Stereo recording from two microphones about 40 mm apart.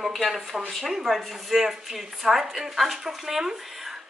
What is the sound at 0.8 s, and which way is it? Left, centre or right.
A woman's voice, centre.